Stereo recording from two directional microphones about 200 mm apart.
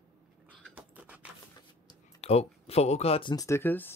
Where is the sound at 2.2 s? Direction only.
30° left (ahead or behind); by 4.0 s 10° left (ahead or behind).